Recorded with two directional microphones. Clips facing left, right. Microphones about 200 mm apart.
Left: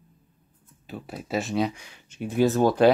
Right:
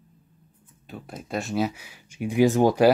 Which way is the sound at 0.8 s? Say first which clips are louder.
Left 2 dB; centre (ahead or behind).